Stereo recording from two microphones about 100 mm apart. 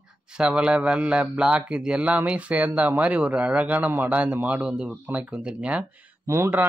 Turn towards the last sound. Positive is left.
turn(degrees=-25)  # may be behind; listen again after turning